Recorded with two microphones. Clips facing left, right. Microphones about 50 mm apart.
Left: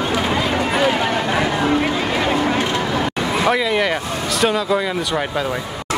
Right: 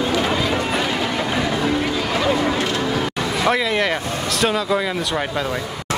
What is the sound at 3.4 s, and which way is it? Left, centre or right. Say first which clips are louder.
Speech: left 1 dB; centre.